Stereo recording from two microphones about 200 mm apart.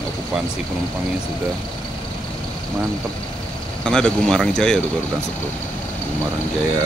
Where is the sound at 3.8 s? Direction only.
5° left (ahead or behind).